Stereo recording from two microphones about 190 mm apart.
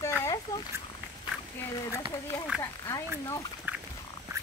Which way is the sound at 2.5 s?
5° right (ahead or behind).